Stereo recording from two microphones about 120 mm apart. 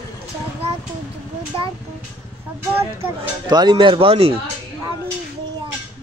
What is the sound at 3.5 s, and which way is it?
Speech, 40° right (ahead or behind).